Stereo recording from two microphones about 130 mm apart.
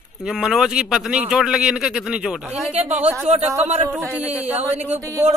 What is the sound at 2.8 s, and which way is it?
Speech, 60° right (ahead or behind).